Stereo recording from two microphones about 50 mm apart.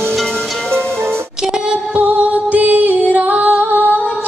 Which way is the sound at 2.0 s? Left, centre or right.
Right.